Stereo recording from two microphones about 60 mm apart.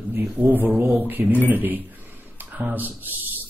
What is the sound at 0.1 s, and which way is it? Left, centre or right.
Speech, right.